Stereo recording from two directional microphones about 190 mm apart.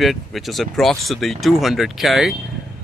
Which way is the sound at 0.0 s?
Centre (ahead or behind).